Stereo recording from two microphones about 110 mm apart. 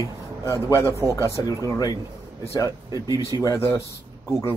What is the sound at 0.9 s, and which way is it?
Speech, 25° right (ahead or behind).